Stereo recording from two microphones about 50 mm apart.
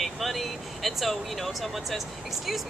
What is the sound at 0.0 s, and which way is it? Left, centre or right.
Speech, centre.